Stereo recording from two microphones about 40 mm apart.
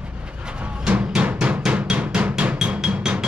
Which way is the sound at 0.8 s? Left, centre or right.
Right.